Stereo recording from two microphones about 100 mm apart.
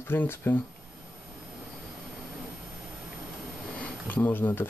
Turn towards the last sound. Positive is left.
turn(degrees=20)  # may be behind; listen again after turning